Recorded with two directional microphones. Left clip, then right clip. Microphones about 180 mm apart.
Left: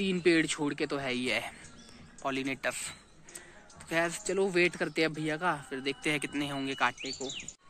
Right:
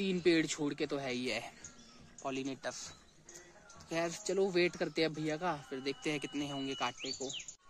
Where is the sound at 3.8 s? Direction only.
10° right (ahead or behind).